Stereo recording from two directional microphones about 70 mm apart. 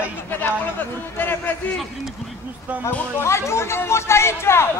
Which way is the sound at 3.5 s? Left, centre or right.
Left.